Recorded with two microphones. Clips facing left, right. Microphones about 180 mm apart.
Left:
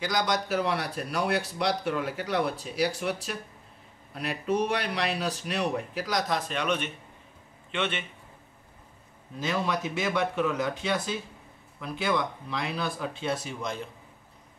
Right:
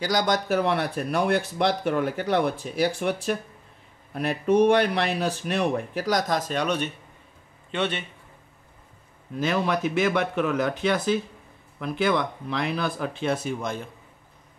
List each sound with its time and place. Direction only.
0.0 s a man's voice: 40° right (ahead or behind)
9.4 s speech: 55° right (ahead or behind)